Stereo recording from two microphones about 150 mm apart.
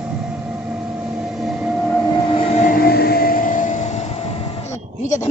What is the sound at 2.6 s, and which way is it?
Vehicle, 80° left.